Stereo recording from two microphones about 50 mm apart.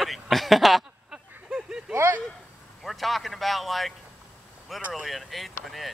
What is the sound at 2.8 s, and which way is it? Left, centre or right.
Speech, centre.